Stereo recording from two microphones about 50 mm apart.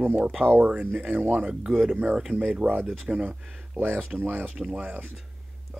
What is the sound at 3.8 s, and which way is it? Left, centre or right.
Speech, right.